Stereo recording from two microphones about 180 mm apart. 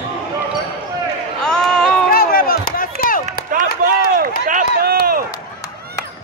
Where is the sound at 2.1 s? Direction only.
55° left (ahead or behind).